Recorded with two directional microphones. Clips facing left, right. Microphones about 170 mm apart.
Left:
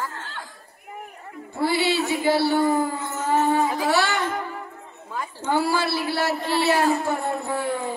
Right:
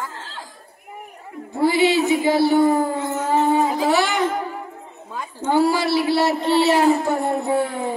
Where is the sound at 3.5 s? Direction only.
15° right (ahead or behind).